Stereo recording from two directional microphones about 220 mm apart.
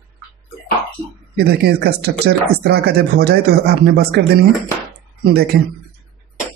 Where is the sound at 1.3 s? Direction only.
45° right (ahead or behind).